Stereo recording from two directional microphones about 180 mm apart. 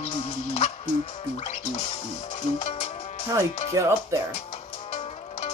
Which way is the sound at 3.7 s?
15° right (ahead or behind).